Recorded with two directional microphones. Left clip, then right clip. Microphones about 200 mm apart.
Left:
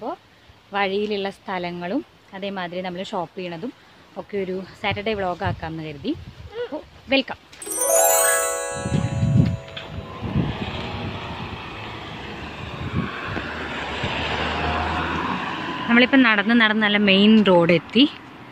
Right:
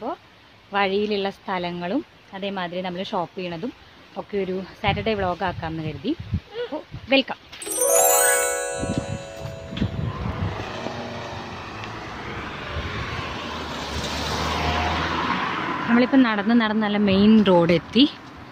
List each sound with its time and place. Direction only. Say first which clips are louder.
0.7 s speech: right 1 dB; 10° right (ahead or behind)
6.7 s a sound: right 1 dB; 5° right (ahead or behind)
7.7 s music: even; centre (ahead or behind)
10.7 s vehicle: even; 5° right (ahead or behind)
12.2 s vehicle: right 2 dB; 25° left (ahead or behind)
12.4 s vehicle: right 2 dB; 40° left (ahead or behind)
15.9 s speech: left 4 dB; centre (ahead or behind)